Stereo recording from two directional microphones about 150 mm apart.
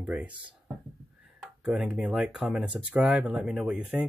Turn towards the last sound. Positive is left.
turn(degrees=-5)  # may be behind; listen again after turning